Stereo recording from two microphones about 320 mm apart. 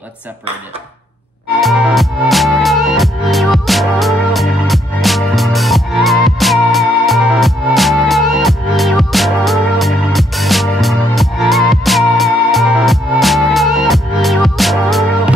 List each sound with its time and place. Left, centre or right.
1.6 s music: centre